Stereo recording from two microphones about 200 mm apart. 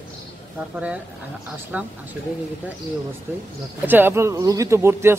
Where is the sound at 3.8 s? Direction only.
10° right (ahead or behind).